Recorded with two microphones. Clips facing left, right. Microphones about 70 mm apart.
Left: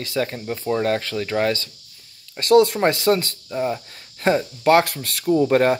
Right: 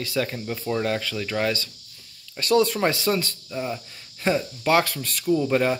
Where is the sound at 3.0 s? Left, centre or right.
Left.